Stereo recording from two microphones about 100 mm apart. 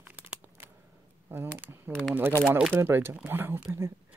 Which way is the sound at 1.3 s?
25° right (ahead or behind).